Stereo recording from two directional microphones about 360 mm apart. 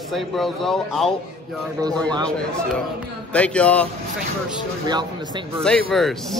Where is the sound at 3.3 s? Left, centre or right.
Centre.